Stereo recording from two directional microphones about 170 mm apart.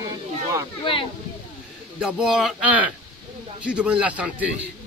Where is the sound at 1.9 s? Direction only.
5° right (ahead or behind).